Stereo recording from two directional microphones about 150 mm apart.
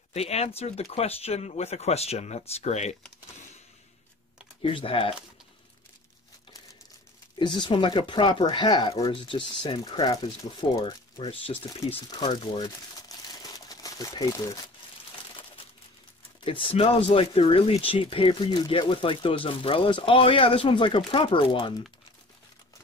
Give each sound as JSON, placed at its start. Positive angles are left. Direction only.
{"t": 0.1, "sound": "speech", "side_deg": 45}
{"t": 4.6, "sound": "speech", "side_deg": 35}
{"t": 7.3, "sound": "speech", "side_deg": 30}
{"t": 11.9, "sound": "crumpling", "side_deg": 30}
{"t": 16.4, "sound": "speech", "side_deg": 35}